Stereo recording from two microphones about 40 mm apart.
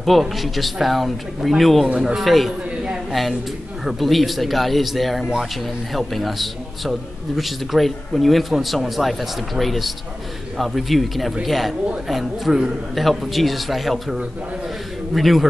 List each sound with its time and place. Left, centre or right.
0.0 s a man's voice: centre
15.1 s a man's voice: centre